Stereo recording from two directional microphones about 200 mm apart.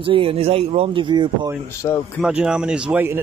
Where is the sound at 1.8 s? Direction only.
15° left (ahead or behind).